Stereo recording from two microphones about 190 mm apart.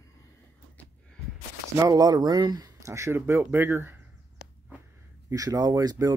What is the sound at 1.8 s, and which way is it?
Speech, 20° right (ahead or behind).